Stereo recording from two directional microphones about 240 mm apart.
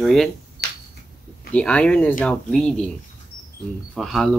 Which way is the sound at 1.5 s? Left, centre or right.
Centre.